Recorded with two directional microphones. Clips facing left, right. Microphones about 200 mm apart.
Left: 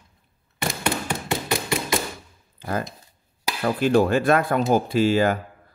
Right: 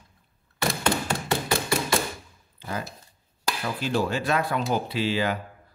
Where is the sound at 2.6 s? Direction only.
50° left (ahead or behind).